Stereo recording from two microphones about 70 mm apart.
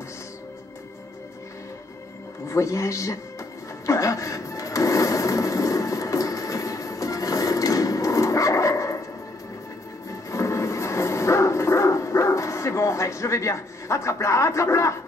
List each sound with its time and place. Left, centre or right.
2.4 s a man's voice: left
3.8 s television: left
10.3 s bow-wow: left